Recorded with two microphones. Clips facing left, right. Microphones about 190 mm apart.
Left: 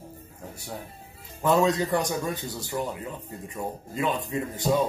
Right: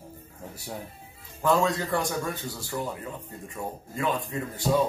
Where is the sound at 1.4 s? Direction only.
20° left (ahead or behind).